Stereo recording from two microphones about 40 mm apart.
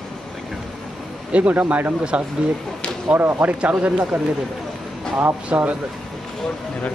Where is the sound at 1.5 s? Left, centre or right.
Right.